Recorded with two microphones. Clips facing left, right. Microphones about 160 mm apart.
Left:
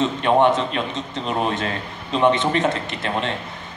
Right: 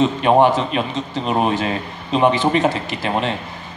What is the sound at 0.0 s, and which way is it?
A man's voice, 15° right (ahead or behind).